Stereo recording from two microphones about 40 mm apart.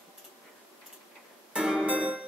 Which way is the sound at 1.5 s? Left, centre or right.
Centre.